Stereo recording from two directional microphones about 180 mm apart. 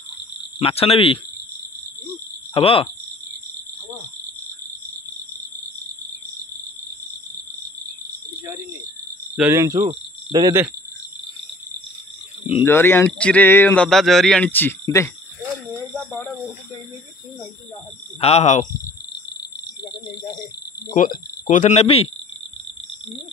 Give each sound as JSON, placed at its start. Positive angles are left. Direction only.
{"t": 0.6, "sound": "speech", "side_deg": 35}
{"t": 2.5, "sound": "speech", "side_deg": 30}
{"t": 9.3, "sound": "speech", "side_deg": -10}
{"t": 12.6, "sound": "speech", "side_deg": 15}
{"t": 18.2, "sound": "speech", "side_deg": 35}
{"t": 20.9, "sound": "speech", "side_deg": 45}